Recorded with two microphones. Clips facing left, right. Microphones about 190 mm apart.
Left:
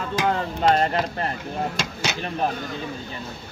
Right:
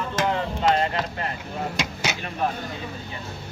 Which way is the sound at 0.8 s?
35° left (ahead or behind).